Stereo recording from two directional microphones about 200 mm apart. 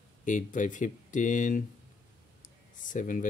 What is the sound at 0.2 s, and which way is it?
Speech, 40° left (ahead or behind).